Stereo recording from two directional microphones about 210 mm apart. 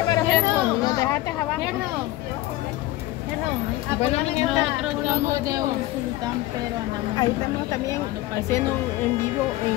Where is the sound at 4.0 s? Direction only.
30° left (ahead or behind).